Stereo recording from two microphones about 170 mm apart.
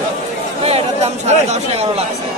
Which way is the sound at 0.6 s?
40° right (ahead or behind).